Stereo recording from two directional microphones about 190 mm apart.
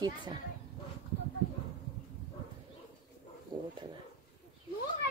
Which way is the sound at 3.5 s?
25° right (ahead or behind).